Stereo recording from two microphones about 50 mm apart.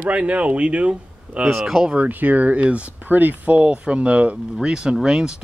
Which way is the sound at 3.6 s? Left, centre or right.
Right.